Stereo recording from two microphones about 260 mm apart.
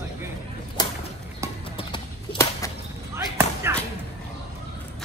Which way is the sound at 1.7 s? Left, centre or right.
Centre.